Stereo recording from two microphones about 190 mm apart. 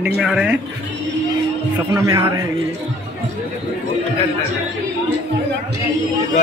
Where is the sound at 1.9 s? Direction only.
15° right (ahead or behind).